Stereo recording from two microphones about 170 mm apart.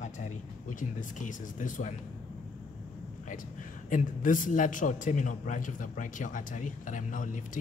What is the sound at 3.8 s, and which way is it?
A man's voice, 50° left (ahead or behind).